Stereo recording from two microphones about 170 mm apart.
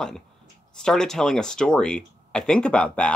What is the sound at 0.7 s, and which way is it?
Speech, 5° left (ahead or behind).